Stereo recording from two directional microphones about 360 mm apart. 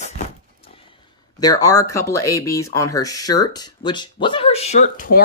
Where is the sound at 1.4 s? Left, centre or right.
Centre.